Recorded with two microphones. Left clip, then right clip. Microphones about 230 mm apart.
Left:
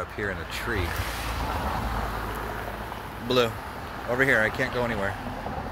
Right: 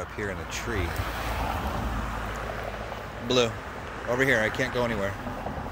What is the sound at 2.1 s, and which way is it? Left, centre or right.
Vehicle, left.